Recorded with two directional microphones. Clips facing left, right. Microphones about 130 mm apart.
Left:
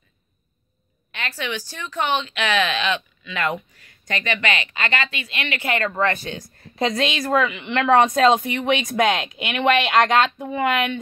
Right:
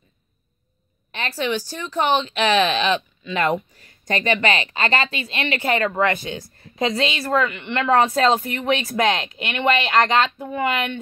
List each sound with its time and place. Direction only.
1.1 s speech: 35° right (ahead or behind)
5.9 s speech: 15° right (ahead or behind)
6.9 s speech: centre (ahead or behind)